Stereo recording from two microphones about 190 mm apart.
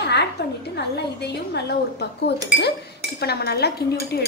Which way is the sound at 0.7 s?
60° left (ahead or behind).